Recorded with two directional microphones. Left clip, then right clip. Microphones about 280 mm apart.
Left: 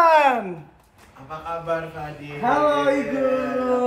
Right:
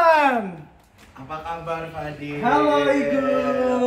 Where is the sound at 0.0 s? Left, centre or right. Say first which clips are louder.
Left 1 dB; left.